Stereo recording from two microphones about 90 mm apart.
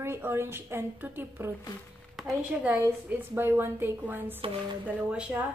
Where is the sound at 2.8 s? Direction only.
25° right (ahead or behind).